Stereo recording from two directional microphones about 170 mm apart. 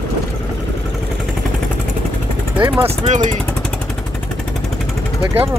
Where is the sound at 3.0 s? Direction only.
45° right (ahead or behind).